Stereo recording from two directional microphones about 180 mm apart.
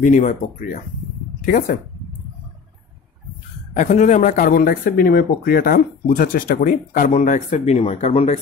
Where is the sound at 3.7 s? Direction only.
40° left (ahead or behind).